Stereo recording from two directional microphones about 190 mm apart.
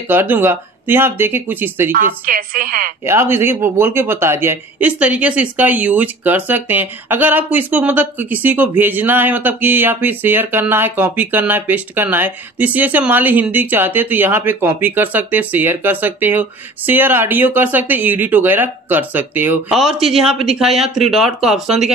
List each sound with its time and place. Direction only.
0.1 s speech: 10° right (ahead or behind)
1.9 s a woman's voice: 45° right (ahead or behind)
3.0 s speech: 15° right (ahead or behind)